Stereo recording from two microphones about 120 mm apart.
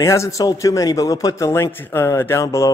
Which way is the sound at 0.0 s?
25° left (ahead or behind).